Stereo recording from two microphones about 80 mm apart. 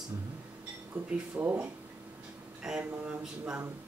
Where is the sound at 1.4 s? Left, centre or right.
Right.